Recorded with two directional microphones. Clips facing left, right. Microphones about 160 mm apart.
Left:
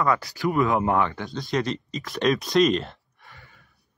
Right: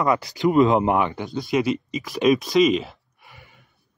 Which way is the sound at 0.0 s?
20° right (ahead or behind).